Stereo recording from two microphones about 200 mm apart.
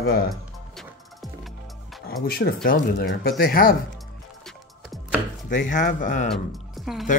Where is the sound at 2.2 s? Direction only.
50° left (ahead or behind).